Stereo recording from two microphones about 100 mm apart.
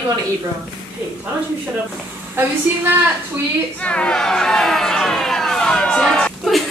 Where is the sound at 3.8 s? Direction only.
10° left (ahead or behind).